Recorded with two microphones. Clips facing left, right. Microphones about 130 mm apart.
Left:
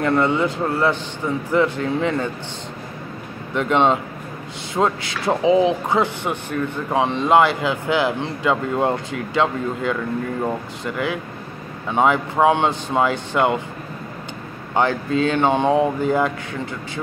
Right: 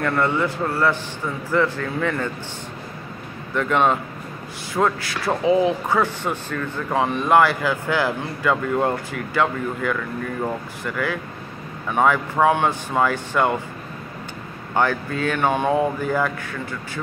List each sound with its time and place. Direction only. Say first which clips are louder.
0.0 s speech: left 3 dB; 20° left (ahead or behind)
3.5 s speech: left 2 dB; 20° left (ahead or behind)
14.7 s speech: left 2 dB; 20° left (ahead or behind)